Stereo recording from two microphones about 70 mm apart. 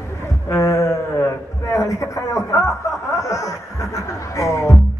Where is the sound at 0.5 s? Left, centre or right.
Left.